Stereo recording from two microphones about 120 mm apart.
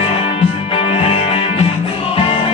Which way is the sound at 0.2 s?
50° left (ahead or behind).